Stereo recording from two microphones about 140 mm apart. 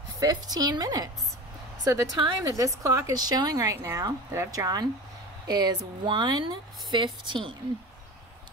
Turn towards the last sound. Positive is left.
turn(degrees=-35)  # may be behind; listen again after turning